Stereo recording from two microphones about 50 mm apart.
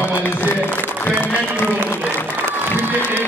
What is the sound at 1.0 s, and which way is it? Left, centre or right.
Music, left.